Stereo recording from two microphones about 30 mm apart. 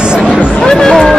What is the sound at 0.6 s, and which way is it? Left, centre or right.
Speech, centre.